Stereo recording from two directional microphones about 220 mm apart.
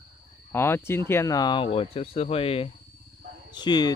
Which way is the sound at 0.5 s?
10° left (ahead or behind).